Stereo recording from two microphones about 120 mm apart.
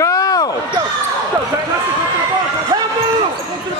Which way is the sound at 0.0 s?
30° left (ahead or behind).